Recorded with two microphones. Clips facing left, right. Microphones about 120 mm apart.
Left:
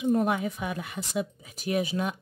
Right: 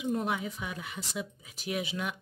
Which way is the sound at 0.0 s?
50° left (ahead or behind).